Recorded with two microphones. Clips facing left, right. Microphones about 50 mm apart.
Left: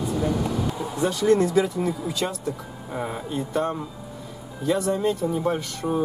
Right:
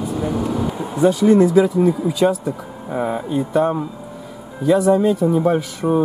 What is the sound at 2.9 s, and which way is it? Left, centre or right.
Speech, centre.